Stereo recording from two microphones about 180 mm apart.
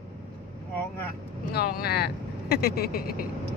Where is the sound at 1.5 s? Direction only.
55° left (ahead or behind).